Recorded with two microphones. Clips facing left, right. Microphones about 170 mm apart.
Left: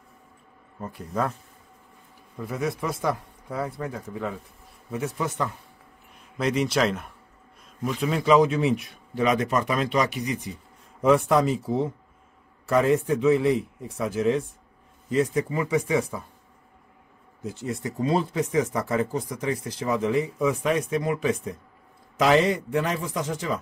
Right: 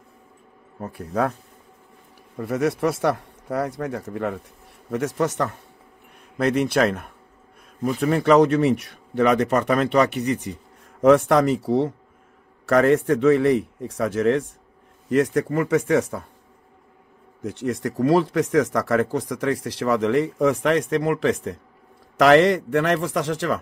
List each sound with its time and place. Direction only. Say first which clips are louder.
2.3 s speech: right 6 dB; 70° right (ahead or behind)
6.3 s speech: right 4 dB; 55° right (ahead or behind)
17.4 s a man's voice: right 5 dB; 80° right